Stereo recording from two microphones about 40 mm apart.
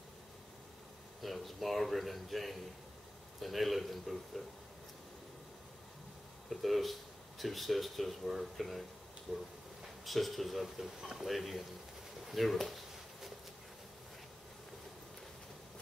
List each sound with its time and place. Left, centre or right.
1.2 s speech: centre
6.5 s speech: centre
12.3 s a sound: centre